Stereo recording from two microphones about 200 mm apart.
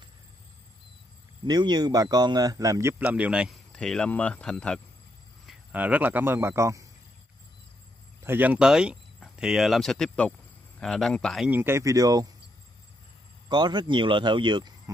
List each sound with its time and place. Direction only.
1.4 s speech: 20° right (ahead or behind); by 4.8 s 5° left (ahead or behind)
5.5 s speech: 5° right (ahead or behind)
8.2 s speech: 10° right (ahead or behind)
13.5 s speech: 20° right (ahead or behind)